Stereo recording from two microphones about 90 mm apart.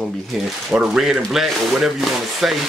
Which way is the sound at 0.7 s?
5° right (ahead or behind).